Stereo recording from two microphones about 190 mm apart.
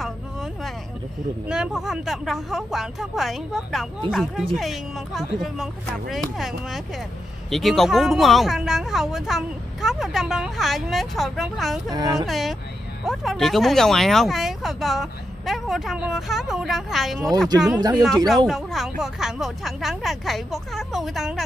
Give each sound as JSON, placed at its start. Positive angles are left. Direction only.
{"t": 1.5, "sound": "speech", "side_deg": 0}
{"t": 11.9, "sound": "speech", "side_deg": -20}
{"t": 12.3, "sound": "speech", "side_deg": 0}
{"t": 17.7, "sound": "speech", "side_deg": -20}
{"t": 18.3, "sound": "speech", "side_deg": 0}